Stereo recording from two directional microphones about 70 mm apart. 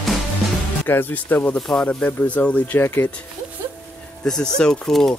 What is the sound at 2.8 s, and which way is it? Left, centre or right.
Speech, left.